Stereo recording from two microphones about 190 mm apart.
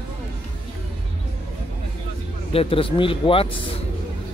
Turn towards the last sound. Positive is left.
turn(degrees=30)  # may be behind; listen again after turning